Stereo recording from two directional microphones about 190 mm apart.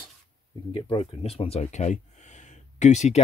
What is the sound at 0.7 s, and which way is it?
Speech, 25° left (ahead or behind).